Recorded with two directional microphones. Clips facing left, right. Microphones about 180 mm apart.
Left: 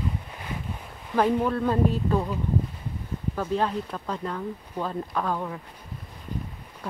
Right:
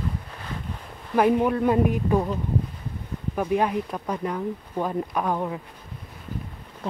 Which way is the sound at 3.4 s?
15° right (ahead or behind).